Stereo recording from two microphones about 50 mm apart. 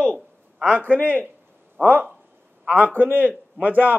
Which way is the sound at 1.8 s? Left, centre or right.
Right.